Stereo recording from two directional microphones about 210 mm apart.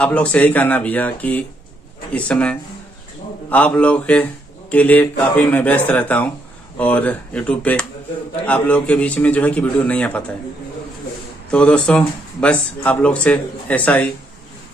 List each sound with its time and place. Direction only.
0.0 s speech: 5° left (ahead or behind)
11.5 s speech: 5° left (ahead or behind)